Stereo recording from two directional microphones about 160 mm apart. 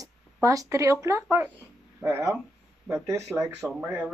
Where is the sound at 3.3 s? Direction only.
15° right (ahead or behind).